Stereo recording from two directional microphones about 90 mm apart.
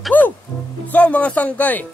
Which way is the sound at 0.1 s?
20° left (ahead or behind).